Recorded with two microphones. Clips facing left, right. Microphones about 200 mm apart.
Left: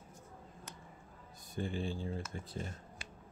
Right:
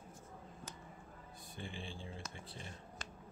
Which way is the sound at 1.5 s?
45° left (ahead or behind).